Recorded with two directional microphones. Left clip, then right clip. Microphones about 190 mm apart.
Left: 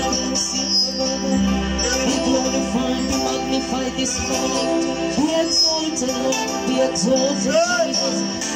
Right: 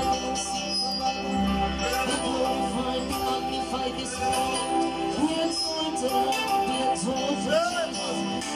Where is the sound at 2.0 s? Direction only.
25° left (ahead or behind).